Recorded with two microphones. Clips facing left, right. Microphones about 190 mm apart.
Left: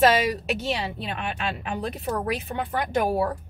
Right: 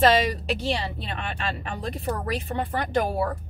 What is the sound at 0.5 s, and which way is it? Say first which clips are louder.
Speech: even; 35° right (ahead or behind).